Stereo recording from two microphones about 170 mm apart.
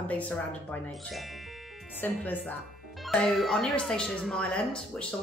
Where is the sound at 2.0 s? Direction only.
10° left (ahead or behind).